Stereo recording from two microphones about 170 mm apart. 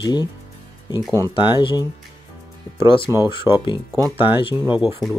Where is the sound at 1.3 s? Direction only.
30° left (ahead or behind).